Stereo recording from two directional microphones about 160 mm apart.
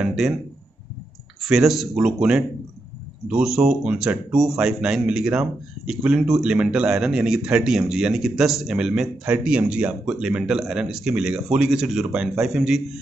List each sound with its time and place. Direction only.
0.0 s speech: centre (ahead or behind)
1.4 s speech: centre (ahead or behind)